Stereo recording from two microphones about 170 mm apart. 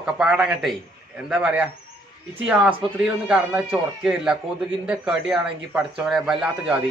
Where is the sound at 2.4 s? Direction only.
5° right (ahead or behind).